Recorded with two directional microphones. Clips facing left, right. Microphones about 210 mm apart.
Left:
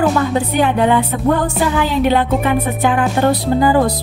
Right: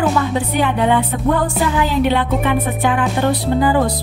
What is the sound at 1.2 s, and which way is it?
Music, 35° left (ahead or behind).